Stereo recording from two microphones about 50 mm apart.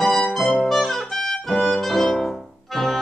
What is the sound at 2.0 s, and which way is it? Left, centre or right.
Music, centre.